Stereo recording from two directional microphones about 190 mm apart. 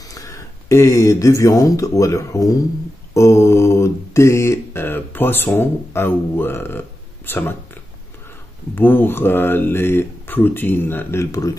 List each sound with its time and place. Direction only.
0.1 s speech: 15° left (ahead or behind)
8.7 s speech: 10° left (ahead or behind)